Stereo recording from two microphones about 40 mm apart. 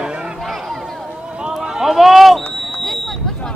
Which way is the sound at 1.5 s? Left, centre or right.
Centre.